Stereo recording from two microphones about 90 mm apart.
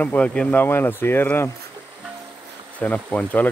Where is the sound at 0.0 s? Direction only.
15° left (ahead or behind).